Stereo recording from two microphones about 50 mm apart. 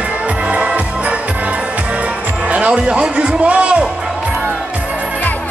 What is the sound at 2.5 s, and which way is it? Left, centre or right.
Speech, right.